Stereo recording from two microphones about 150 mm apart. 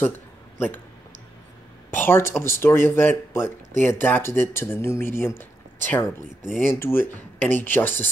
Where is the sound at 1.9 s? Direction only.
15° left (ahead or behind).